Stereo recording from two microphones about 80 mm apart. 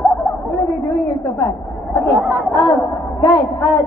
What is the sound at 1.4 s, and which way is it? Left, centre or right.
Chatter, left.